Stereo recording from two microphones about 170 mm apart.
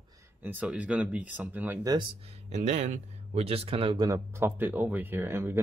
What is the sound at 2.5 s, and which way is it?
Speech, 45° right (ahead or behind).